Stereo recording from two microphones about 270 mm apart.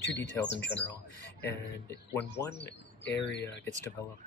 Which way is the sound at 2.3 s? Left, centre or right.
Left.